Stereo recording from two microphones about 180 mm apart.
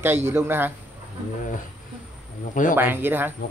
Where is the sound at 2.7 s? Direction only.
10° right (ahead or behind).